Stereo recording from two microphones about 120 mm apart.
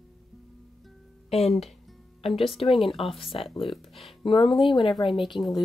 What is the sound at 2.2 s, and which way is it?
Speech, 50° left (ahead or behind).